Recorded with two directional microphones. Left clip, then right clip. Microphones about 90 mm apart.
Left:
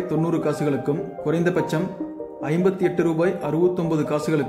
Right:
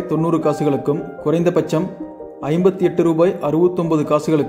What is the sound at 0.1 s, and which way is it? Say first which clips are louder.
Speech: right 7 dB; 35° right (ahead or behind).